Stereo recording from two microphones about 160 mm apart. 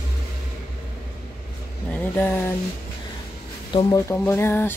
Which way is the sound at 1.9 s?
10° left (ahead or behind).